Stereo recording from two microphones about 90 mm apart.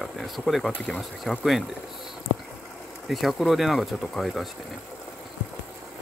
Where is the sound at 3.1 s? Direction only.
Centre (ahead or behind).